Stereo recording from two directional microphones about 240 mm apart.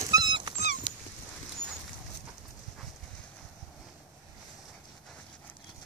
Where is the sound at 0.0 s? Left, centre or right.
Centre.